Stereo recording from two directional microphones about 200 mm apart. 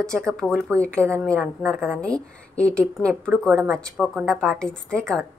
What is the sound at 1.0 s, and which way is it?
A woman's voice, 15° right (ahead or behind).